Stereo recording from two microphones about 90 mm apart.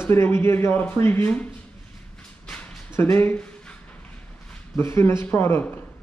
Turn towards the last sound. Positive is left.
turn(degrees=25)  # may be behind; listen again after turning